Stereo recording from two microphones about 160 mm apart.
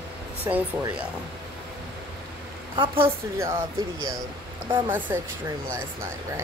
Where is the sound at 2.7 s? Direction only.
35° right (ahead or behind).